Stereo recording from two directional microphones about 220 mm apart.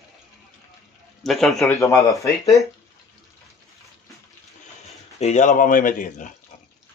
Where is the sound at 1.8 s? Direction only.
15° left (ahead or behind).